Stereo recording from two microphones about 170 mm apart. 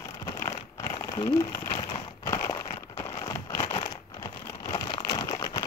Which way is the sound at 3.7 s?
20° left (ahead or behind).